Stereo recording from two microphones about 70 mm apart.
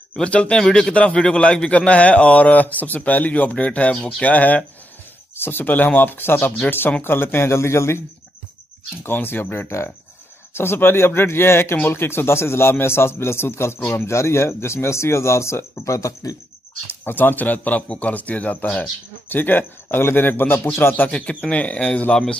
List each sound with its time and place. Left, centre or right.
0.1 s a man's voice: centre; by 8.0 s left
9.0 s a man's voice: left
14.0 s speech: left
17.0 s a man's voice: left
21.1 s speech: centre